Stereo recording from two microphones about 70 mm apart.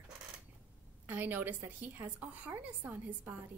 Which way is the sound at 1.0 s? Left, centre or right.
Right.